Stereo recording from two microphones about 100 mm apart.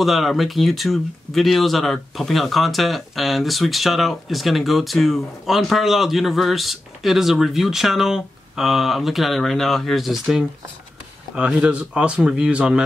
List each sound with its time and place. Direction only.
0.0 s speech: centre (ahead or behind)